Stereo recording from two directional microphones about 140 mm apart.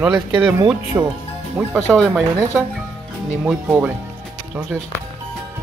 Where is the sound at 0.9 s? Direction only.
10° right (ahead or behind).